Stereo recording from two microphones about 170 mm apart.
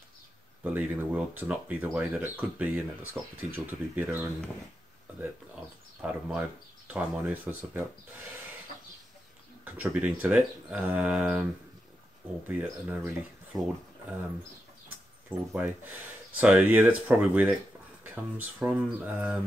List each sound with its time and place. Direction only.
0.7 s speech: 10° right (ahead or behind)
5.9 s speech: 5° right (ahead or behind)
9.7 s speech: 10° right (ahead or behind)
12.4 s speech: 10° right (ahead or behind)
15.2 s speech: 10° right (ahead or behind)